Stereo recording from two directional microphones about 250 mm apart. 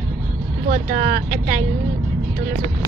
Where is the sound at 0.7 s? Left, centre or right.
Right.